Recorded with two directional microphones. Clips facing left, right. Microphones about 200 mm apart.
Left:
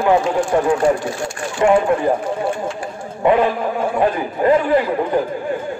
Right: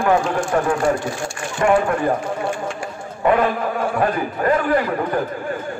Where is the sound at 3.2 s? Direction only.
15° left (ahead or behind).